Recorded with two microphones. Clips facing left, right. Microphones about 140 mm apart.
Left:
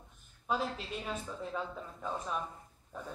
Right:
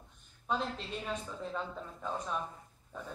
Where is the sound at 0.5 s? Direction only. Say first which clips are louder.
Left 1 dB; 5° left (ahead or behind).